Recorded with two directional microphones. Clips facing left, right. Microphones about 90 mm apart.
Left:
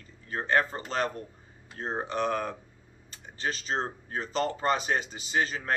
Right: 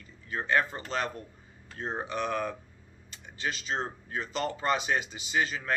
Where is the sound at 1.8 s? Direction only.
35° left (ahead or behind).